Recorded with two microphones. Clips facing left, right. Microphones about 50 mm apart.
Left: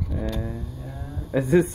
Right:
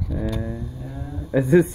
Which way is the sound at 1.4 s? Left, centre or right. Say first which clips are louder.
Right 3 dB; right.